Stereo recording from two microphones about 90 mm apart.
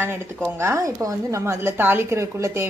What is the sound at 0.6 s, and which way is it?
A woman's voice, 35° right (ahead or behind).